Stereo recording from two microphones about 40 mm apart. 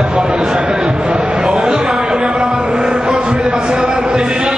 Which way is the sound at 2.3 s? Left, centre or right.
Right.